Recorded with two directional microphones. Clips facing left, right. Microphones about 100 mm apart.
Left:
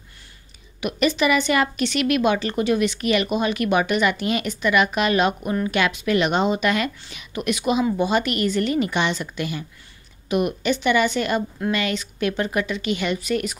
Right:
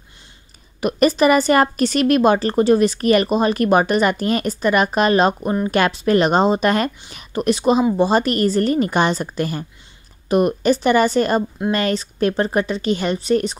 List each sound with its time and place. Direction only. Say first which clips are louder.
0.7 s a woman's voice: right 5 dB; 40° right (ahead or behind)